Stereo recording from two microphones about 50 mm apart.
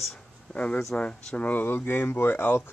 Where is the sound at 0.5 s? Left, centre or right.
Left.